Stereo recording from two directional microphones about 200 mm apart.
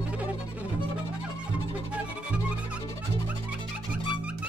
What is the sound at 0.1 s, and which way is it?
Music, 5° right (ahead or behind).